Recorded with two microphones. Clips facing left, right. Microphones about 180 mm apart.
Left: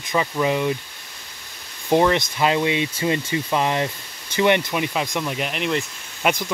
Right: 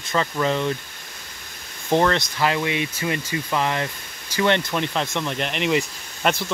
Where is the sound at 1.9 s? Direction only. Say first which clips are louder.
Left 2 dB; 15° left (ahead or behind).